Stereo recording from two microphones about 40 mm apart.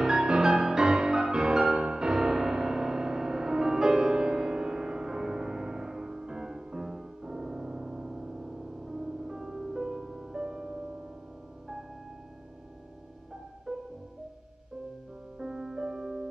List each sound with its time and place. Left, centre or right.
0.0 s music: centre
10.4 s music: right
13.7 s music: centre
15.3 s music: centre